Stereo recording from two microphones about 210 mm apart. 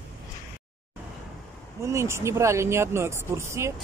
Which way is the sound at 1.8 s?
15° right (ahead or behind).